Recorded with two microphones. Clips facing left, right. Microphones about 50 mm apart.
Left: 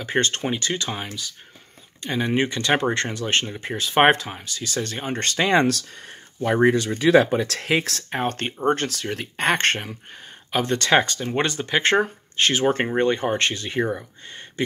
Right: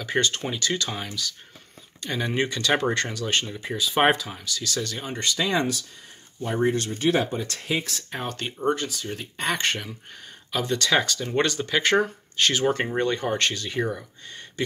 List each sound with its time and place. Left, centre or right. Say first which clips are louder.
0.4 s speech: left 2 dB; left
3.6 s speech: left 4 dB; left
4.3 s speech: even; left
5.1 s speech: left 5 dB; left
8.1 s speech: left 7 dB; left
8.7 s speech: left 4 dB; left